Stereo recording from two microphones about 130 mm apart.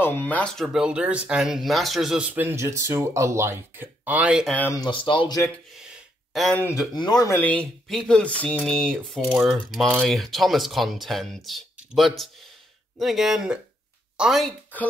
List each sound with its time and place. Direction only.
0.0 s speech: 15° left (ahead or behind)
0.7 s speech: 10° right (ahead or behind)
4.5 s speech: 10° left (ahead or behind)
4.7 s speech: 40° left (ahead or behind)
5.8 s gasp: 5° right (ahead or behind)
6.9 s speech: 30° left (ahead or behind)
7.3 s speech: 10° left (ahead or behind); by 14.5 s 5° right (ahead or behind)